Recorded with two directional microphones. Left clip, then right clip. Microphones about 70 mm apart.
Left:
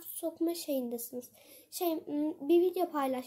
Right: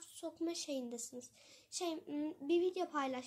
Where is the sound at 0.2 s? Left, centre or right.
Left.